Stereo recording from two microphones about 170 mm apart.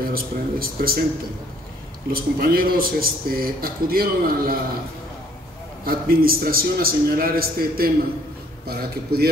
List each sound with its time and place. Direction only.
0.0 s speech: 60° right (ahead or behind)
2.0 s speech: 60° right (ahead or behind)
5.9 s speech: 60° right (ahead or behind)